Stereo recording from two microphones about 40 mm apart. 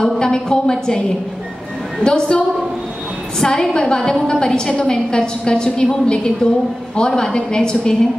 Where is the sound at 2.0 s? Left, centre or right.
Left.